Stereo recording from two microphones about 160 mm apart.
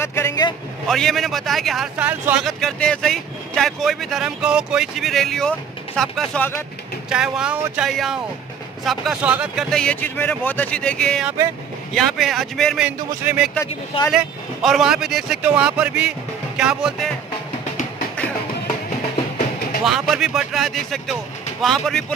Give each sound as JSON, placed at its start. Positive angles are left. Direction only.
{"t": 0.0, "sound": "a man's voice", "side_deg": 15}
{"t": 0.8, "sound": "speech", "side_deg": 0}
{"t": 2.4, "sound": "speech", "side_deg": 5}
{"t": 19.8, "sound": "speech", "side_deg": 0}